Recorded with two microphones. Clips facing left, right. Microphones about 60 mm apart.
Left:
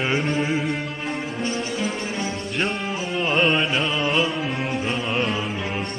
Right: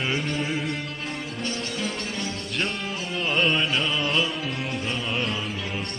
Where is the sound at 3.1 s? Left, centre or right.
Centre.